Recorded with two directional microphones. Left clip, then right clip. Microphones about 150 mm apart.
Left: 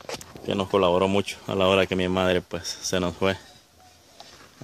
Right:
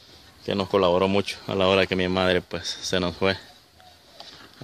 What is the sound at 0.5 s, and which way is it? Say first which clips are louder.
Speech: even; centre (ahead or behind).